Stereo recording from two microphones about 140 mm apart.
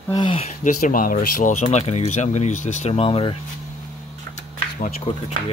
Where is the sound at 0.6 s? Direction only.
75° left (ahead or behind).